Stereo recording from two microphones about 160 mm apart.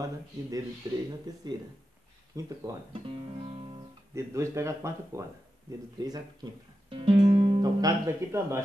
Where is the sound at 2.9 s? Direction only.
30° right (ahead or behind).